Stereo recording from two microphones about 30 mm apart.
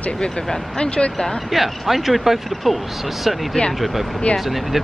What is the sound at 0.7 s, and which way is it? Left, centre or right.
Speech, left.